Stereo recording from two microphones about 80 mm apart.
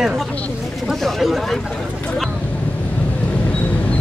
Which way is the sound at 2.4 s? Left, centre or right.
Centre.